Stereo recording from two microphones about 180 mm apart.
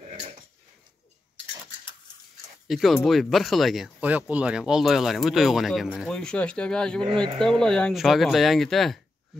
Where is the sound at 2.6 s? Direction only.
Centre (ahead or behind).